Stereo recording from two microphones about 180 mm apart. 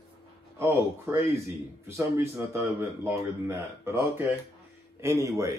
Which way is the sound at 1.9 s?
15° right (ahead or behind).